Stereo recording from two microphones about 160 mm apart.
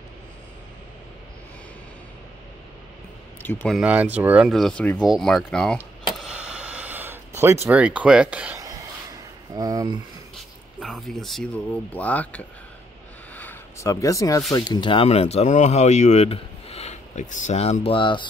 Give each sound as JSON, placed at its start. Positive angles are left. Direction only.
{"t": 3.4, "sound": "speech", "side_deg": 10}
{"t": 3.7, "sound": "speech", "side_deg": -10}
{"t": 6.1, "sound": "a sound", "side_deg": -5}
{"t": 7.6, "sound": "speech", "side_deg": -10}
{"t": 9.5, "sound": "speech", "side_deg": -25}
{"t": 10.8, "sound": "speech", "side_deg": 0}
{"t": 13.4, "sound": "a sound", "side_deg": 15}
{"t": 14.5, "sound": "speech", "side_deg": 25}